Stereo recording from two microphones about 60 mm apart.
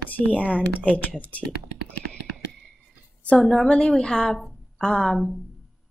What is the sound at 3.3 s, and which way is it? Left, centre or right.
A woman's voice, centre.